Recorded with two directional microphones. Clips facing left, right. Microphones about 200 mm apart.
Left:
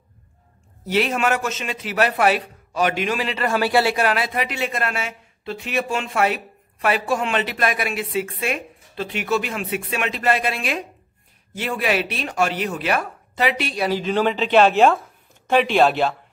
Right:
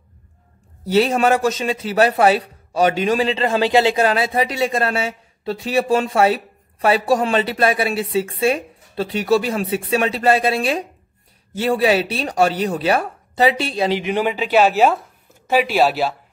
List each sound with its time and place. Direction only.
0.9 s a man's voice: 35° right (ahead or behind); by 16.2 s 5° right (ahead or behind)